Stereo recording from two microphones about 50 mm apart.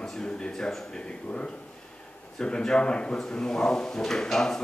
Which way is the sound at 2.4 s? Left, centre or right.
Centre.